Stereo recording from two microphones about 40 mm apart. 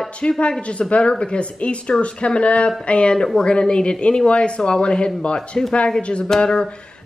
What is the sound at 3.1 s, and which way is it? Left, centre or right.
Speech, centre.